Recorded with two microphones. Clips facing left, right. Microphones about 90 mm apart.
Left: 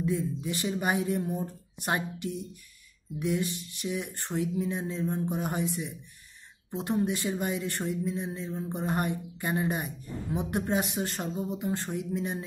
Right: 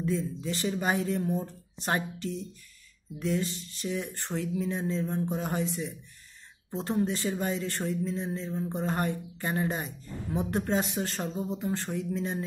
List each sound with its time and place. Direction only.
0.0 s speech: 15° left (ahead or behind)